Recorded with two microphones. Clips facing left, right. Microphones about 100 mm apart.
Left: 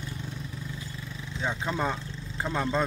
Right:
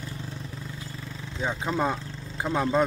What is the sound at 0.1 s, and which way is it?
Vehicle, 35° right (ahead or behind).